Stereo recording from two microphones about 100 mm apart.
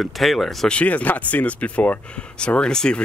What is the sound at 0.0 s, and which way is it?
Speech, centre (ahead or behind).